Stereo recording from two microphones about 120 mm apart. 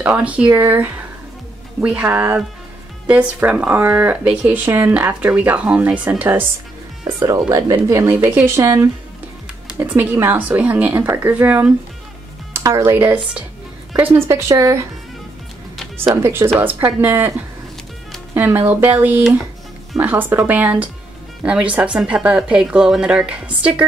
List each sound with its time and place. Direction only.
0.0 s speech: 15° right (ahead or behind)
7.2 s speech: 35° right (ahead or behind)
8.1 s speech: 15° right (ahead or behind)
8.5 s speech: 25° right (ahead or behind)
16.2 s speech: 20° right (ahead or behind)